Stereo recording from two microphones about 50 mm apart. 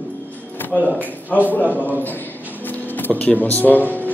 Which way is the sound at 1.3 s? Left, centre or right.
Left.